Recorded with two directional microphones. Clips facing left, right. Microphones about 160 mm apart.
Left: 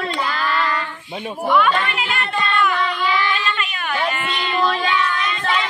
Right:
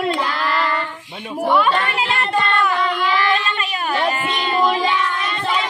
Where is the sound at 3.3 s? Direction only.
35° right (ahead or behind).